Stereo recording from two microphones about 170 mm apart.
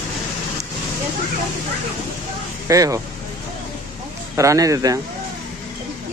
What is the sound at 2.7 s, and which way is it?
Speech, 20° right (ahead or behind).